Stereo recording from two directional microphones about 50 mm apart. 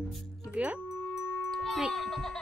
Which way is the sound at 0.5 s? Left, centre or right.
Right.